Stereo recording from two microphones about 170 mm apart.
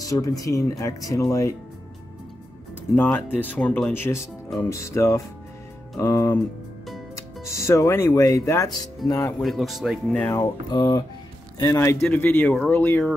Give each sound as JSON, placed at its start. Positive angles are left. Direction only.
{"t": 0.0, "sound": "speech", "side_deg": 20}
{"t": 3.0, "sound": "speech", "side_deg": 10}
{"t": 9.4, "sound": "speech", "side_deg": 0}
{"t": 10.2, "sound": "speech", "side_deg": 20}